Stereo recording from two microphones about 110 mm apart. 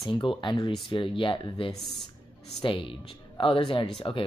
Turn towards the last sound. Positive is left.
turn(degrees=50)  # may be behind; listen again after turning